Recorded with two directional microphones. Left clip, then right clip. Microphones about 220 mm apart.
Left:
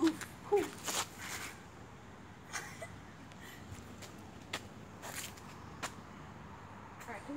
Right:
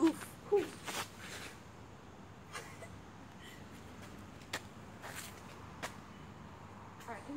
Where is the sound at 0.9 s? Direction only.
20° left (ahead or behind).